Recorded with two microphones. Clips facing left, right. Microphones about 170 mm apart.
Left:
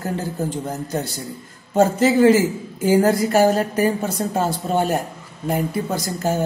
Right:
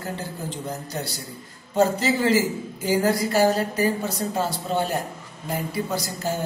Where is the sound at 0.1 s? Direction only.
50° left (ahead or behind).